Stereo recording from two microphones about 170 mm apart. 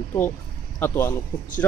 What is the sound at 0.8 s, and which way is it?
Speech, 15° left (ahead or behind).